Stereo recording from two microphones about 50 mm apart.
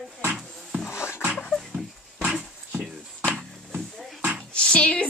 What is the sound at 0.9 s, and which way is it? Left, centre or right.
Music, left.